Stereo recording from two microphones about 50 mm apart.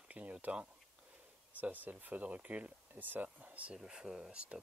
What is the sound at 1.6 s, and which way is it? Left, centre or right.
Speech, right.